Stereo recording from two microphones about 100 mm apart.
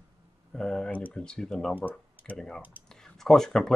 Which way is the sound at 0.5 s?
5° left (ahead or behind).